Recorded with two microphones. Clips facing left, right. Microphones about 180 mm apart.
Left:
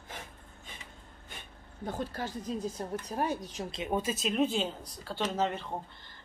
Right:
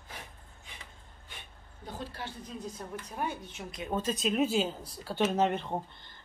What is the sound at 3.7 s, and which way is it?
Speech, 15° left (ahead or behind).